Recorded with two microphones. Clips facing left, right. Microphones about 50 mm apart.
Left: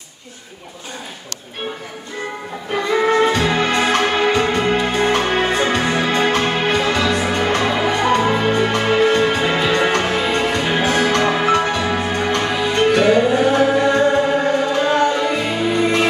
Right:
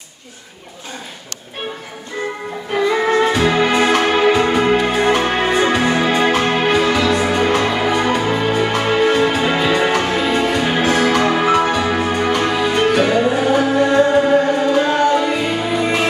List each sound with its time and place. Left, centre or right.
2.7 s music: centre